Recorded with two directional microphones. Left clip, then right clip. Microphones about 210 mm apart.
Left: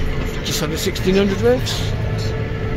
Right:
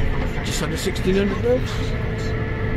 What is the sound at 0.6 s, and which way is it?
Speech, 15° left (ahead or behind).